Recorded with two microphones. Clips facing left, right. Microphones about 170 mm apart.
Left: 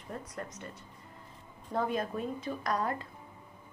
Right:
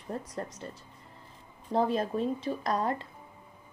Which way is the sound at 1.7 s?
30° right (ahead or behind).